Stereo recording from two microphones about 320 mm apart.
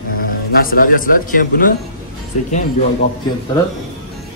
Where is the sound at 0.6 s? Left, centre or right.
Left.